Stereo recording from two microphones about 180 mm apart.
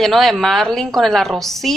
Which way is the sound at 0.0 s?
Centre (ahead or behind).